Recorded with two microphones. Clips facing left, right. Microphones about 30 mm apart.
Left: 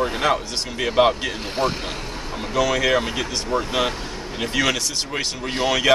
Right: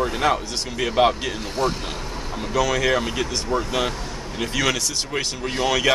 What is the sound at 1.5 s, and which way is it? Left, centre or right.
Speech, left.